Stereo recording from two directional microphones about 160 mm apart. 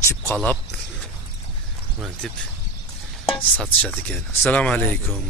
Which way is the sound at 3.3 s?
5° left (ahead or behind).